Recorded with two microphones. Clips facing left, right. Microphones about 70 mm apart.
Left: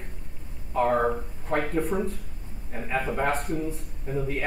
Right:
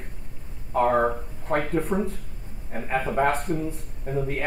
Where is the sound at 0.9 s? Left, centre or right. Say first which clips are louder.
Right 1 dB; centre.